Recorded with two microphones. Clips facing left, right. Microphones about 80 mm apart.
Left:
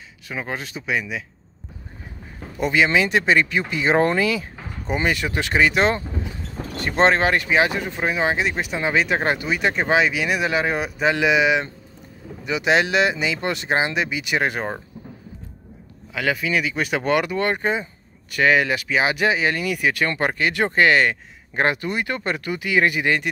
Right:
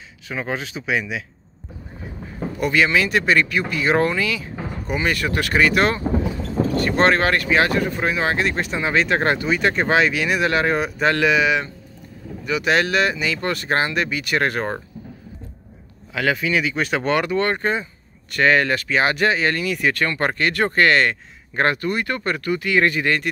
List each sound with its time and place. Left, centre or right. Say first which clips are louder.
0.3 s speech: right 3 dB; centre
2.6 s speech: even; centre
4.2 s a sound: left 2 dB; left
5.0 s speech: right 2 dB; centre
6.0 s speech: right 9 dB; right
6.8 s speech: left 1 dB; left
16.1 s speech: right 2 dB; centre